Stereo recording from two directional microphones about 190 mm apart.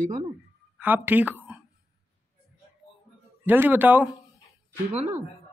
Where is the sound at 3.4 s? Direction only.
10° right (ahead or behind).